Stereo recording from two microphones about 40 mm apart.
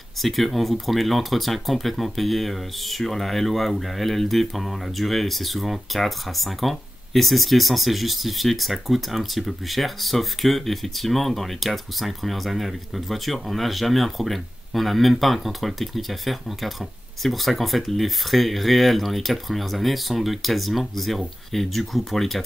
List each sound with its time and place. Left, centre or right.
0.2 s speech: centre